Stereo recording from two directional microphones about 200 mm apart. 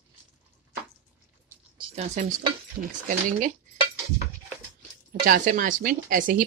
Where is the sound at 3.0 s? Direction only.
40° right (ahead or behind).